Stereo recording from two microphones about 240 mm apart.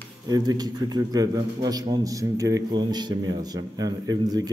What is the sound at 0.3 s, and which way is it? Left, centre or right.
A man's voice, centre.